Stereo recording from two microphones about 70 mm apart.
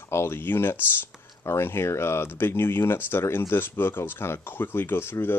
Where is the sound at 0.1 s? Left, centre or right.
Left.